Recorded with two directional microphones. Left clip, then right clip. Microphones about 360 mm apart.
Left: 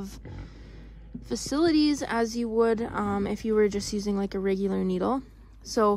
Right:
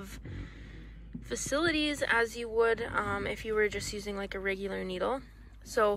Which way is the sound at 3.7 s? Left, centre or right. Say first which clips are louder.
Left 5 dB; left.